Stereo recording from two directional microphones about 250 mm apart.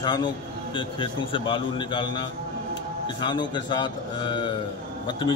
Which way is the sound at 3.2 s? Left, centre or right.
Centre.